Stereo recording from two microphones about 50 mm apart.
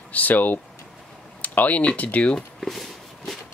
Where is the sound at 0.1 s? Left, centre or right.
Left.